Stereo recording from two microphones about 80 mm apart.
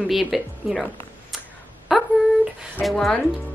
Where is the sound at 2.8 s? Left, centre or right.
Centre.